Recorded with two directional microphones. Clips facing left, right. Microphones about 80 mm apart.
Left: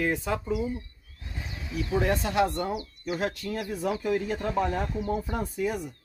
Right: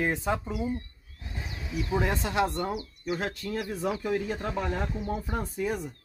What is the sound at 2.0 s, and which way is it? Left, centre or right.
Speech, right.